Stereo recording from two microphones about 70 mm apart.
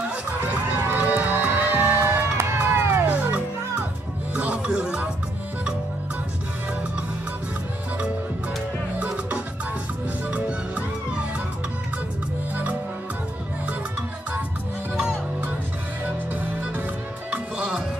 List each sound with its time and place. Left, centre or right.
0.1 s music: right
3.1 s music: right
10.2 s music: centre